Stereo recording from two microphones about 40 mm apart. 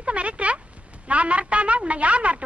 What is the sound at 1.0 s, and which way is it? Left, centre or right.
A woman's voice, right.